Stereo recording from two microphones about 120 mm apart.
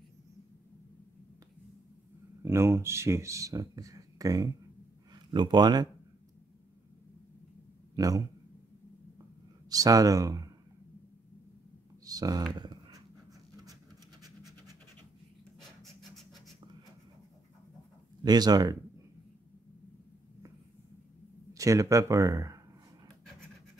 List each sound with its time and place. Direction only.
2.4 s speech: 20° right (ahead or behind)
5.1 s speech: 40° right (ahead or behind)
7.9 s a man's voice: 30° right (ahead or behind)
9.7 s speech: 30° right (ahead or behind)
12.0 s a sound: 30° right (ahead or behind)
12.5 s dog: 35° right (ahead or behind)
15.8 s rub: centre (ahead or behind)
18.2 s speech: 35° right (ahead or behind)
21.5 s speech: 25° right (ahead or behind)